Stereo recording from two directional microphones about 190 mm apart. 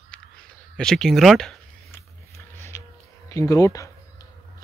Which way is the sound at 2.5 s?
15° left (ahead or behind).